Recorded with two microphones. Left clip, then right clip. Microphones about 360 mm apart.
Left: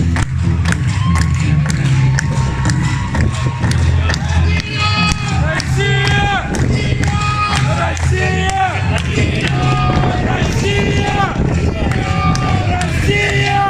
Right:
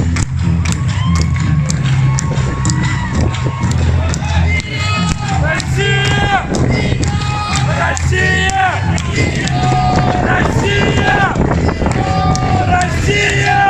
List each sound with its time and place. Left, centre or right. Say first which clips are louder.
5.8 s music: even; right
7.8 s music: right 3 dB; right
12.7 s music: right 2 dB; right